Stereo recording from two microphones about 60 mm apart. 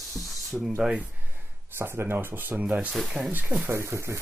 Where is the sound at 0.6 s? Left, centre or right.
Centre.